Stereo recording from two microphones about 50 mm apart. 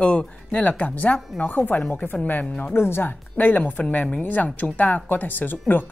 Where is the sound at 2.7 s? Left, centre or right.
Left.